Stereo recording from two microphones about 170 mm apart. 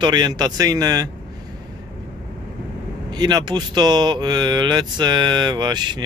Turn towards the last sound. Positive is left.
turn(degrees=-25)  # may be behind; listen again after turning